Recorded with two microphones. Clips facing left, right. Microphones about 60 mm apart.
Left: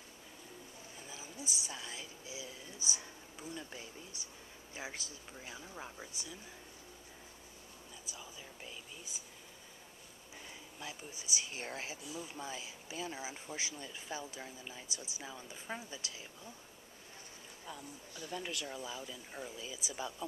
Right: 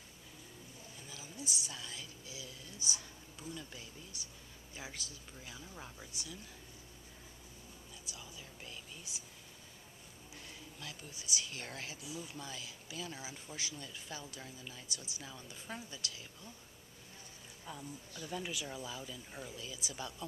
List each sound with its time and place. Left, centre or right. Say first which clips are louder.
1.0 s speech: even; left
8.1 s speech: left 1 dB; centre
10.8 s speech: left 4 dB; centre
17.7 s speech: right 2 dB; centre
18.7 s speech: left 1 dB; centre